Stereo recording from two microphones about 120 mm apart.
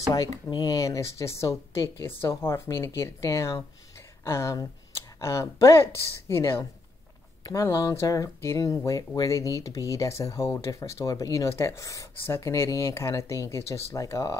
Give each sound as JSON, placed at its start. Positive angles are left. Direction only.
{"t": 0.1, "sound": "speech", "side_deg": 30}